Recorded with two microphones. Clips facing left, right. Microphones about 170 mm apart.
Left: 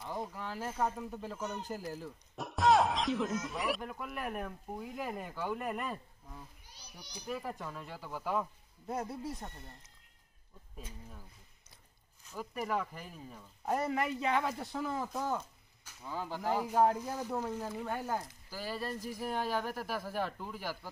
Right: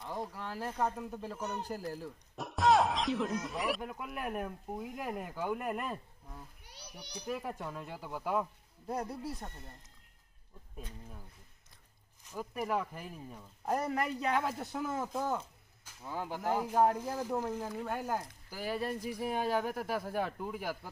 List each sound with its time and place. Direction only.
0.0 s speech: centre (ahead or behind)
6.6 s a sound: 65° right (ahead or behind)
7.5 s speech: 5° right (ahead or behind)
8.8 s speech: centre (ahead or behind)
12.5 s speech: 5° right (ahead or behind)
13.7 s speech: centre (ahead or behind)
18.5 s speech: 20° right (ahead or behind)